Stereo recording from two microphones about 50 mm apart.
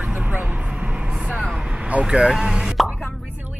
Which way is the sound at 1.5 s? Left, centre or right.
Centre.